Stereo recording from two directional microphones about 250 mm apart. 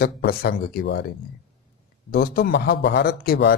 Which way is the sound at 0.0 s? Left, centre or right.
Left.